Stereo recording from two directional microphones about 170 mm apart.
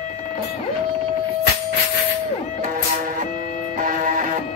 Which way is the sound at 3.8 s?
50° right (ahead or behind).